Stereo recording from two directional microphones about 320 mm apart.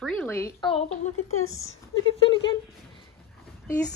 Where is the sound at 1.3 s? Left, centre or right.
Left.